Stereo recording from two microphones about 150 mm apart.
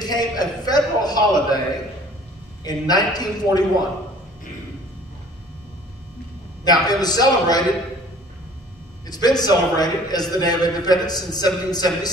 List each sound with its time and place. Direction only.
0.0 s a man's voice: 25° left (ahead or behind)
2.6 s a man's voice: 25° left (ahead or behind)
6.6 s a man's voice: 25° left (ahead or behind)
9.0 s a man's voice: 25° left (ahead or behind)